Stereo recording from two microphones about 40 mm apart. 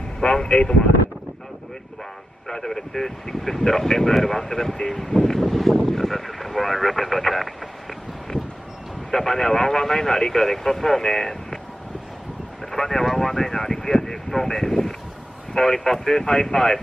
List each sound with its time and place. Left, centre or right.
0.2 s speech: centre
2.4 s speech: centre
9.1 s speech: centre
12.7 s speech: centre